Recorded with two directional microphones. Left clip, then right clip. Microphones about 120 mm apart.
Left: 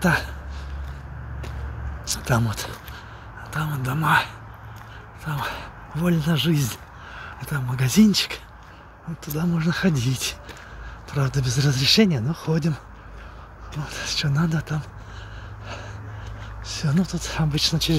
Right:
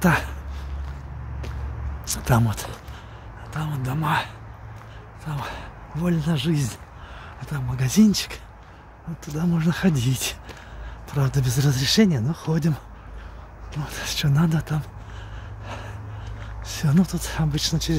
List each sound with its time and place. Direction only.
0.0 s speech: 55° right (ahead or behind)
2.0 s a sound: 55° right (ahead or behind)
3.4 s speech: 15° right (ahead or behind)
9.6 s speech: 30° right (ahead or behind)
13.7 s speech: 45° right (ahead or behind)
15.6 s gasp: 40° right (ahead or behind)
16.6 s speech: 50° right (ahead or behind)
17.5 s speech: 20° right (ahead or behind)